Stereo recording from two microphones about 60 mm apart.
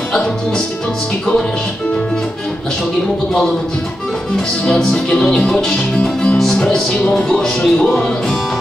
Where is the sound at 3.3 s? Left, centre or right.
Centre.